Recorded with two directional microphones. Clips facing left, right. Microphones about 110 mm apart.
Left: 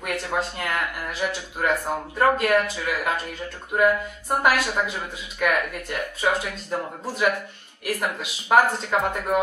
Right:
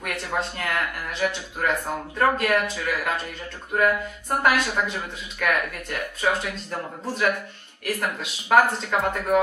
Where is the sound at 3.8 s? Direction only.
10° left (ahead or behind).